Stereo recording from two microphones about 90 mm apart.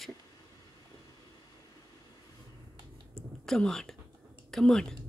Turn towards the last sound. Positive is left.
turn(degrees=5)  # may be behind; listen again after turning